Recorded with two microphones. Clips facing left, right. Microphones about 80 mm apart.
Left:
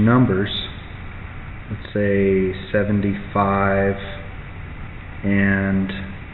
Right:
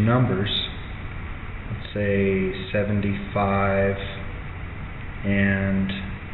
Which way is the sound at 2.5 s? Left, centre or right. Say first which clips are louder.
Left 5 dB; left.